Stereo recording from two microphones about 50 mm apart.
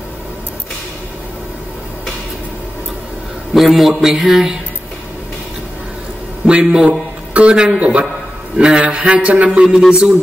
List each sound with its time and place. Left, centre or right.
3.5 s a man's voice: centre
6.4 s a man's voice: centre